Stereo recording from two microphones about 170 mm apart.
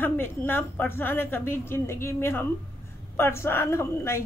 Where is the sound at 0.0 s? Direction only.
15° left (ahead or behind).